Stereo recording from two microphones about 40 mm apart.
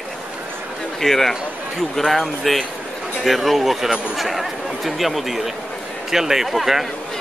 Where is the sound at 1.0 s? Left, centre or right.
Centre.